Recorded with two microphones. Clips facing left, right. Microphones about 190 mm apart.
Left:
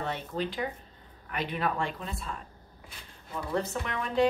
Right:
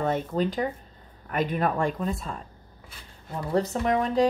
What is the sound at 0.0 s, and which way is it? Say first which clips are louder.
A woman's voice: right 7 dB; 45° right (ahead or behind).